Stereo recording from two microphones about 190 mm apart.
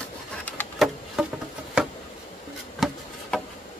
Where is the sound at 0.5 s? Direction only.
10° left (ahead or behind).